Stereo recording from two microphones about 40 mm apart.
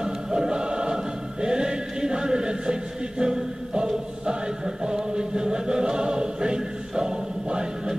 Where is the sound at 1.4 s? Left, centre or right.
Right.